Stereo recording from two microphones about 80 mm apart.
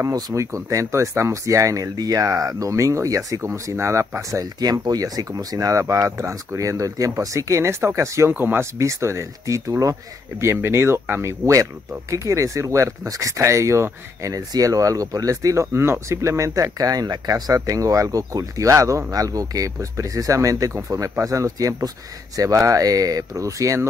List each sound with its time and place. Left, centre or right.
0.0 s speech: right
8.3 s speech: right
8.7 s speech: right
10.4 s speech: right